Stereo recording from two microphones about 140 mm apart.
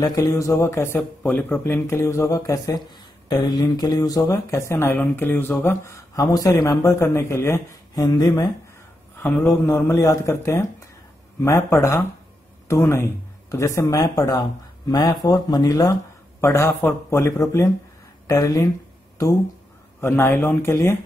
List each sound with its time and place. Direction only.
0.0 s speech: 25° left (ahead or behind)
0.9 s speech: 10° left (ahead or behind); by 8.5 s 25° left (ahead or behind)
9.2 s speech: 15° left (ahead or behind)
20.0 s speech: 15° left (ahead or behind)